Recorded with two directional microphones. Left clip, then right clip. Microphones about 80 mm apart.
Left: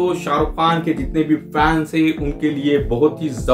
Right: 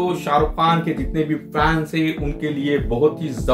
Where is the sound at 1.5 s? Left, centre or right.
Left.